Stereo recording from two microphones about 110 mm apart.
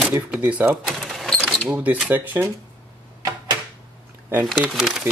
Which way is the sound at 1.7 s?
15° right (ahead or behind).